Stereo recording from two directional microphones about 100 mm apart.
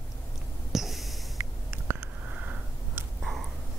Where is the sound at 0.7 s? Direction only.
Centre (ahead or behind).